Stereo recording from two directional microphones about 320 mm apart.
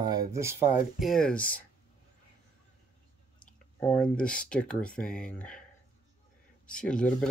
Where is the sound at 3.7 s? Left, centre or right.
Centre.